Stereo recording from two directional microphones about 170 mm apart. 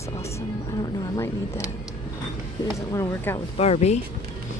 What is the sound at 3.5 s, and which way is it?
Speech, 40° left (ahead or behind).